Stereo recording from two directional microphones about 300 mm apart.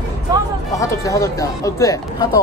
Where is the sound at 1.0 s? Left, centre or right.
Centre.